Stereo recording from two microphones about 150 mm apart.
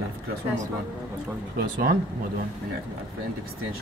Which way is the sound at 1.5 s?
85° right.